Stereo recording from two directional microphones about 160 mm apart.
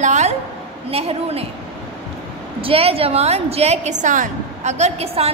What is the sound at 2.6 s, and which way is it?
A woman's voice, 35° right (ahead or behind).